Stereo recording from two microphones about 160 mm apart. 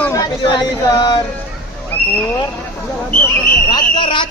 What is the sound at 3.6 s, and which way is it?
Speech, 25° left (ahead or behind).